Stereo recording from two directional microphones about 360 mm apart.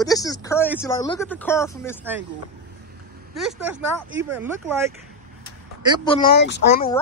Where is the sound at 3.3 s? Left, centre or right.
Centre.